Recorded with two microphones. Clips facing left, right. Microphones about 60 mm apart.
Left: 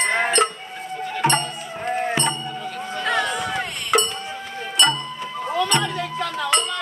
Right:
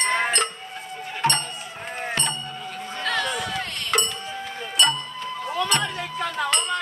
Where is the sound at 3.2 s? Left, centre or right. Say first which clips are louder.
Left 3 dB; centre.